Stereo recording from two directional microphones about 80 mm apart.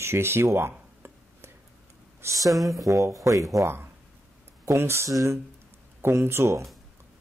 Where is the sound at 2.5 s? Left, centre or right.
Centre.